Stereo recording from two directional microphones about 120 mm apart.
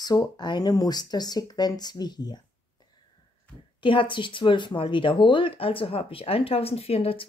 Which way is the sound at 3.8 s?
45° left (ahead or behind).